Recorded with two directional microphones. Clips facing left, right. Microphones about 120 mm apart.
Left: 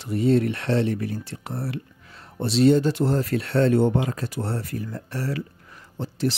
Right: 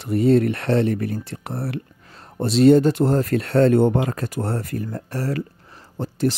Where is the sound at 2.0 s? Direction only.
40° right (ahead or behind).